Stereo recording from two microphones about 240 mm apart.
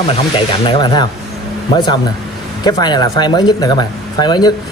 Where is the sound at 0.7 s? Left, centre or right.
Centre.